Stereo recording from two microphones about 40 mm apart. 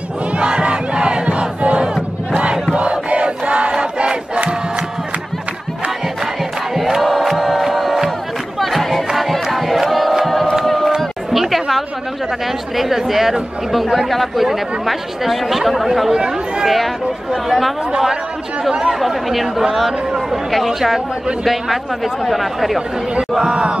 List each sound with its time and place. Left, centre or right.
0.4 s crowd: right
6.7 s crowd: centre
9.8 s music: centre
10.6 s a sound: centre
11.0 s chatter: centre
12.7 s speech: centre
16.1 s speech: right
16.6 s speech: centre
18.6 s speech: centre
18.9 s speech: centre
22.2 s speech: centre
23.5 s a sound: right